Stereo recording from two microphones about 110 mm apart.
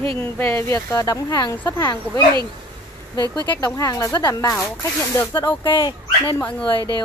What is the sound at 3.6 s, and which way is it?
Speech, 25° left (ahead or behind).